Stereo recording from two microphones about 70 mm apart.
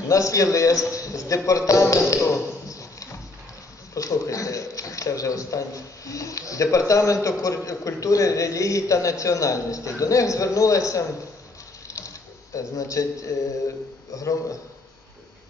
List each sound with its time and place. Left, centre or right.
0.1 s a man's voice: left
1.7 s music: left
3.9 s a man's voice: left
11.9 s mechanisms: left
14.1 s a man's voice: left